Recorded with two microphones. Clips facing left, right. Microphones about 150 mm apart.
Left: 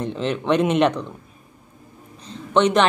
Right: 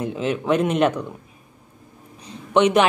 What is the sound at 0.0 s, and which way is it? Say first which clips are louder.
Speech: even; 5° right (ahead or behind).